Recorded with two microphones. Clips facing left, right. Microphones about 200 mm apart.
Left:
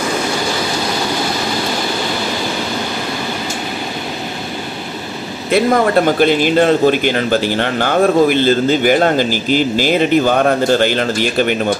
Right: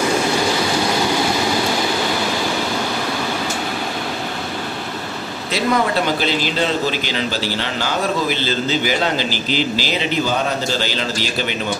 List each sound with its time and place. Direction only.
5.5 s a man's voice: 50° left (ahead or behind)